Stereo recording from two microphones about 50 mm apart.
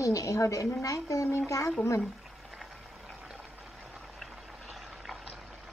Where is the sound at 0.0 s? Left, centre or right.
Left.